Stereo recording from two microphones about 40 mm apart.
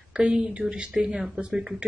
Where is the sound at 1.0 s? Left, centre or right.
Centre.